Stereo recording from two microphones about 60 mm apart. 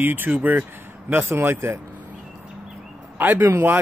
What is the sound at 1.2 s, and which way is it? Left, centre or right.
Speech, right.